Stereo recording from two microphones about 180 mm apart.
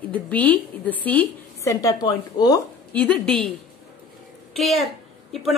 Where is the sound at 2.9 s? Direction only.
5° left (ahead or behind).